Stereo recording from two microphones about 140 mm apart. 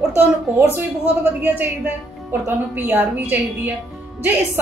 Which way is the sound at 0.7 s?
15° right (ahead or behind).